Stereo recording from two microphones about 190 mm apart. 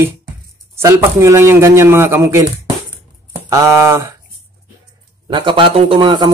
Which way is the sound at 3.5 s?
15° right (ahead or behind).